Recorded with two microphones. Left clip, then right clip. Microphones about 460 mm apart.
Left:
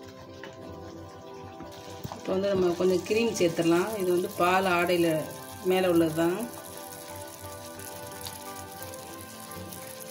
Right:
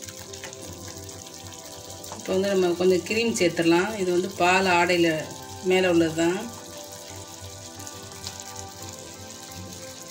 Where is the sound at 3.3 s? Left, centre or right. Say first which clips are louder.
Right 6 dB; left.